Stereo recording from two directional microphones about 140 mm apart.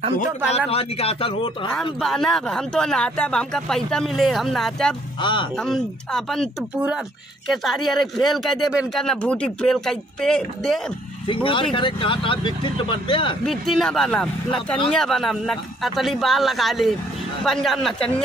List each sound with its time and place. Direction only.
0.7 s a man's voice: 45° left (ahead or behind)
1.7 s speech: centre (ahead or behind)
5.2 s speech: 35° left (ahead or behind)
5.6 s speech: 5° left (ahead or behind)
11.2 s speech: 40° left (ahead or behind)
13.5 s speech: centre (ahead or behind)